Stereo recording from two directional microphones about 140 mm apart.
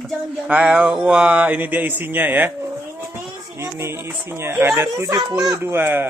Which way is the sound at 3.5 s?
20° right (ahead or behind).